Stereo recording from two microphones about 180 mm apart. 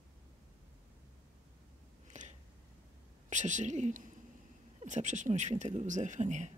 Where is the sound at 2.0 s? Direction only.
40° right (ahead or behind).